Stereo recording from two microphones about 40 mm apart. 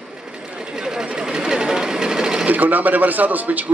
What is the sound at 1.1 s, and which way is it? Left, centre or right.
Sewing machine, centre.